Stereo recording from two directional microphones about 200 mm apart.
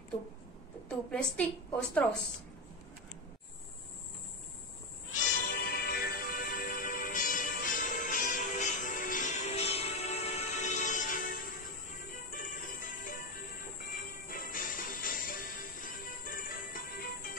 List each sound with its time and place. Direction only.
0.8 s a woman's voice: 5° left (ahead or behind)
5.1 s music: 45° left (ahead or behind)